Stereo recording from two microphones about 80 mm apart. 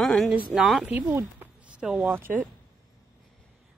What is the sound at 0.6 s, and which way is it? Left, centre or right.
Speech, centre.